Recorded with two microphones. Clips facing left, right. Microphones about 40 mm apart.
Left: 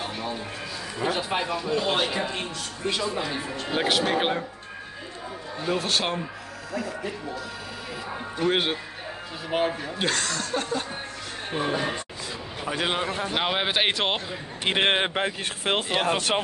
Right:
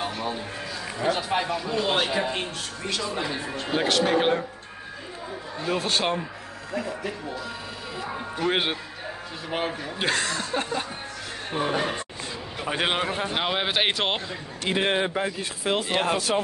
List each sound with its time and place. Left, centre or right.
0.9 s speech: centre
3.8 s speech: centre
5.6 s speech: centre
6.7 s speech: right
8.4 s speech: centre
11.5 s speech: centre
12.7 s speech: centre
13.3 s speech: centre
14.6 s speech: left